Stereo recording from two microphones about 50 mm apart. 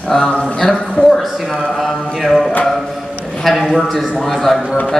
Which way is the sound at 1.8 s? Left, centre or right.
Centre.